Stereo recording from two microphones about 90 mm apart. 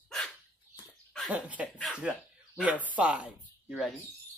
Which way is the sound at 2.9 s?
15° right (ahead or behind).